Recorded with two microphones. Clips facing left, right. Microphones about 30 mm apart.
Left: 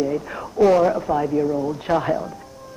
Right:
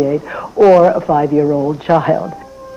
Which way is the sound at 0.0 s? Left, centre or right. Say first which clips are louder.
Right 7 dB; right.